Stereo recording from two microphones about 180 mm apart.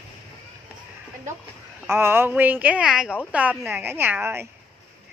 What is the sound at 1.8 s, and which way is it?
A woman's voice, 15° right (ahead or behind).